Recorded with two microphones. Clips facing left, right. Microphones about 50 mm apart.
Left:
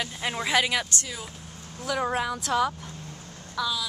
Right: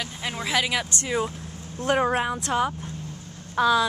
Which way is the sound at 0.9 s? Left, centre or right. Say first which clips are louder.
Right 8 dB; right.